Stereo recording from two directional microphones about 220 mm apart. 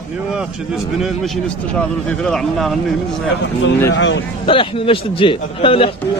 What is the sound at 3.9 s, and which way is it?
Speech, 55° left (ahead or behind).